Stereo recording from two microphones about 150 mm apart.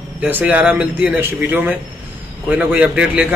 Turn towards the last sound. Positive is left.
turn(degrees=-5)  # may be behind; listen again after turning